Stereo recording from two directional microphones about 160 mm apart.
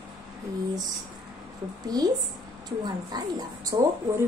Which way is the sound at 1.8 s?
25° right (ahead or behind).